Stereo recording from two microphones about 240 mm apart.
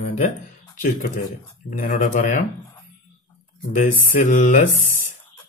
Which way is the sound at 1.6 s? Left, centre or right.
Left.